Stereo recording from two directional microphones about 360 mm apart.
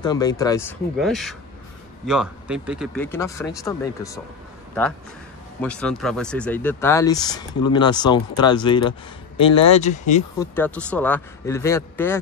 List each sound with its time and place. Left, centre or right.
0.0 s speech: centre
5.6 s speech: centre
10.4 s speech: centre